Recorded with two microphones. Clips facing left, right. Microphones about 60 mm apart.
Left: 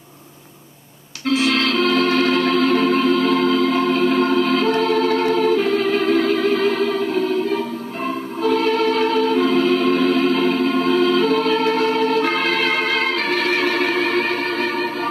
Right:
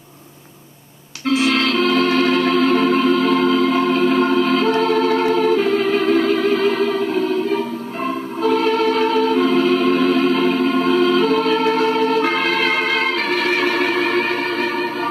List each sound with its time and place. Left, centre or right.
1.3 s music: centre
8.4 s music: centre